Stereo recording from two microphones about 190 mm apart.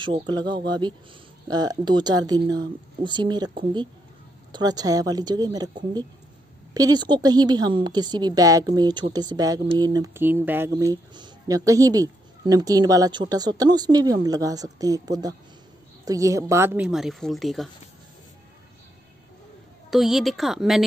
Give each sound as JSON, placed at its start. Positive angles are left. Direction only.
{"t": 0.0, "sound": "a woman's voice", "side_deg": -25}
{"t": 19.9, "sound": "a woman's voice", "side_deg": 0}